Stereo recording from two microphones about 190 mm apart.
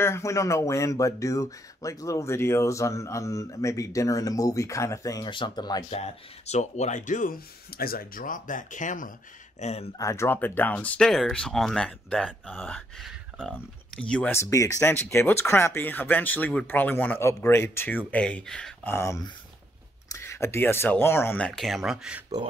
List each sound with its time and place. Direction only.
0.0 s speech: 15° left (ahead or behind)
5.9 s speech: 35° left (ahead or behind)
9.9 s speech: 15° left (ahead or behind); by 22.2 s 5° right (ahead or behind)